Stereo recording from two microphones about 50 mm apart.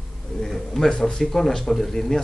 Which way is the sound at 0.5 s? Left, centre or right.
Centre.